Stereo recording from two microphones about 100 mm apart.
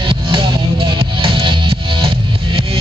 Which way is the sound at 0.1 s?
55° right (ahead or behind).